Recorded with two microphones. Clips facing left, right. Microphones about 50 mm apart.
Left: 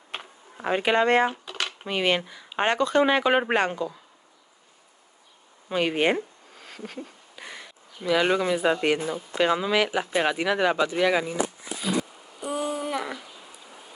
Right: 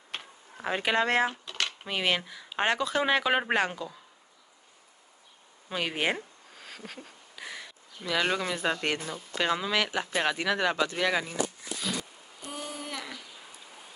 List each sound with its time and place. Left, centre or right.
0.1 s speech: centre
5.7 s speech: centre
12.4 s a sound: left